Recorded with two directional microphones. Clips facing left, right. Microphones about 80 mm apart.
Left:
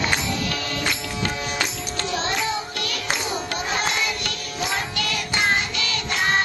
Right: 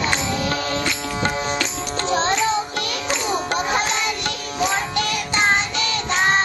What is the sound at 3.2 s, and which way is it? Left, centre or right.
Chatter, right.